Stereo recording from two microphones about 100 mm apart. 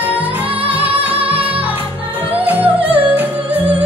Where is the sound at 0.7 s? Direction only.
15° right (ahead or behind).